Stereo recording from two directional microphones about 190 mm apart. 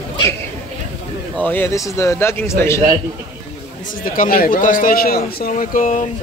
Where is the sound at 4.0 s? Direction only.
45° left (ahead or behind).